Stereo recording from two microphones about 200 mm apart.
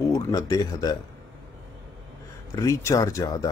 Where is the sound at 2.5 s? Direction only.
15° left (ahead or behind).